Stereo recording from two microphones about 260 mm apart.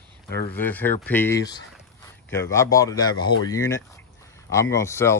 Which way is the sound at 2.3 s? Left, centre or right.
Centre.